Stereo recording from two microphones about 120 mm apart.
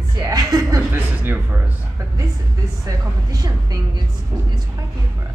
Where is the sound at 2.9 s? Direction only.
30° right (ahead or behind).